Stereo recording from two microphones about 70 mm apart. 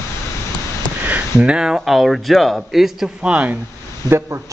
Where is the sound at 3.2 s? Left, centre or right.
Centre.